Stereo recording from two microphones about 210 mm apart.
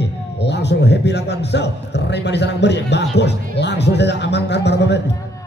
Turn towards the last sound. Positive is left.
turn(degrees=55)  # may be behind; listen again after turning